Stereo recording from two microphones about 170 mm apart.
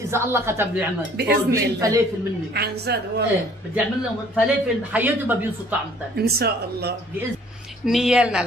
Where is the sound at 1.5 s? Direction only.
20° right (ahead or behind).